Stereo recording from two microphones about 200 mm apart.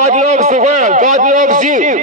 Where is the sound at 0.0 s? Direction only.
35° right (ahead or behind).